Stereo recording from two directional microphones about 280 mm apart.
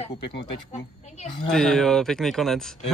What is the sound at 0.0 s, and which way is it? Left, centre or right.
Speech, left.